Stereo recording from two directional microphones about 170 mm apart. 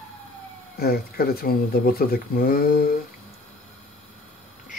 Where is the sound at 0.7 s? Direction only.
65° left (ahead or behind).